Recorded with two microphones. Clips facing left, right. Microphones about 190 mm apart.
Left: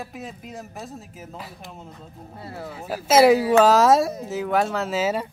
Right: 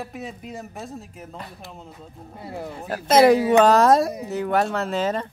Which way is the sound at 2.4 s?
15° right (ahead or behind).